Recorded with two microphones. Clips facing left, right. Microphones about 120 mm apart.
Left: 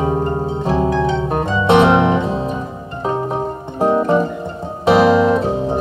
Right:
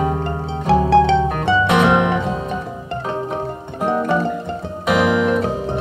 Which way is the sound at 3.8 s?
25° left (ahead or behind).